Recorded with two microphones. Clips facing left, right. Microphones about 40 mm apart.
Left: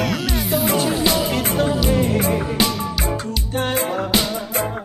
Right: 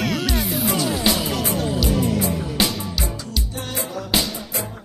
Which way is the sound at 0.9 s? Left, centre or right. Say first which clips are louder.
Left 2 dB; centre.